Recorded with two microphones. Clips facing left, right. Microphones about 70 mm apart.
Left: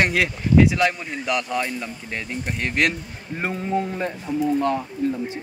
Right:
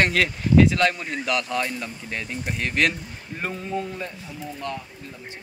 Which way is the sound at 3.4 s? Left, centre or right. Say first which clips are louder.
Left 5 dB; left.